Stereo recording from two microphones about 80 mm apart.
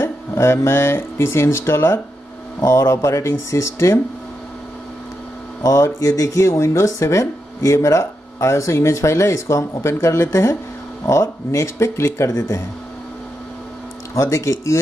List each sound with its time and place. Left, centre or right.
0.0 s speech: left
2.6 s speech: left
5.6 s speech: left
12.3 s speech: left
14.1 s speech: left